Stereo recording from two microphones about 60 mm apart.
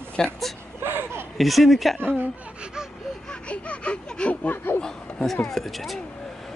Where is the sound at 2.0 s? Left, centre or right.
Right.